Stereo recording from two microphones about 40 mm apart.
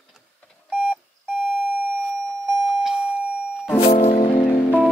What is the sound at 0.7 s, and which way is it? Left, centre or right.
Alarm clock, centre.